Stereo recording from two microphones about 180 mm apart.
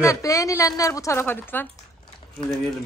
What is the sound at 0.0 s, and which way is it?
A woman's voice, 20° left (ahead or behind).